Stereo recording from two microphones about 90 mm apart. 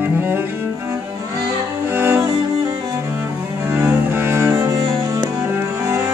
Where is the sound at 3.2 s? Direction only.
25° right (ahead or behind).